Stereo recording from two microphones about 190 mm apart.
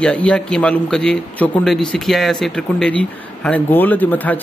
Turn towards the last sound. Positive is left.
turn(degrees=10)  # may be behind; listen again after turning